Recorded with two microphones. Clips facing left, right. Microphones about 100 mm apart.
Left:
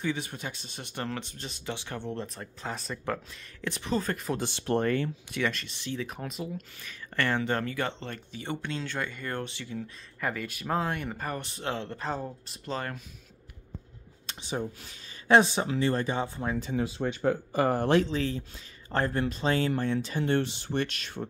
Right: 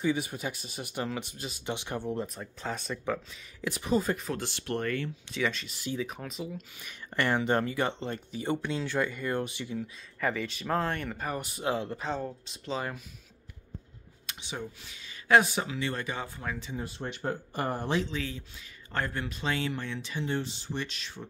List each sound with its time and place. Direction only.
0.0 s speech: 15° right (ahead or behind)
4.3 s speech: 20° left (ahead or behind)
5.4 s speech: centre (ahead or behind)
6.8 s speech: 15° right (ahead or behind)
9.8 s speech: centre (ahead or behind)
11.2 s speech: 10° right (ahead or behind)
12.0 s speech: 5° left (ahead or behind)
14.2 s speech: 40° left (ahead or behind)
15.2 s speech: 25° left (ahead or behind)
17.6 s speech: 75° left (ahead or behind)
18.1 s speech: 35° left (ahead or behind)
20.2 s speech: 65° left (ahead or behind)